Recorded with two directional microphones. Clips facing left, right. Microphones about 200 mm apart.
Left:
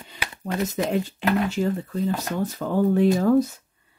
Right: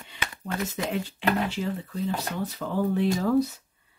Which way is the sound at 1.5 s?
45° left (ahead or behind).